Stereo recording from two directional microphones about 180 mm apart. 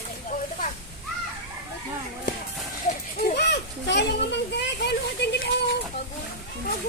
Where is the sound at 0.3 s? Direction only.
50° left (ahead or behind).